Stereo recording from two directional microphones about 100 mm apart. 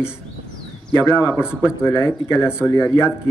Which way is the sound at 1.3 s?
10° right (ahead or behind).